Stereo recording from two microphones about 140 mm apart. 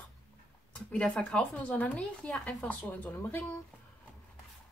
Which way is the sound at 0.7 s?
10° left (ahead or behind).